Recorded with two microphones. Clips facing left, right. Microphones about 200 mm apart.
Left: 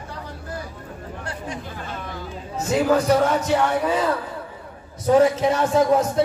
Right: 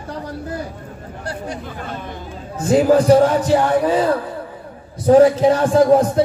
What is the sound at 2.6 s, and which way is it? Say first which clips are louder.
Speech: right 6 dB; 30° right (ahead or behind).